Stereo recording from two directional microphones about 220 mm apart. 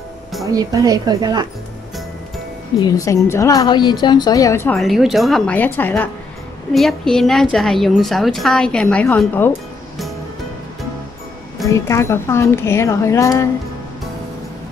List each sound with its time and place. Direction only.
0.5 s a woman's voice: 15° right (ahead or behind)
2.8 s speech: 15° left (ahead or behind)
4.7 s a woman's voice: centre (ahead or behind)
11.7 s speech: 15° left (ahead or behind)